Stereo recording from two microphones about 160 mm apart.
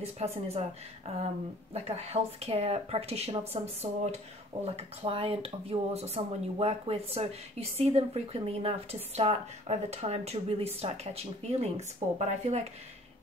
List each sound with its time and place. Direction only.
0.2 s speech: 40° right (ahead or behind)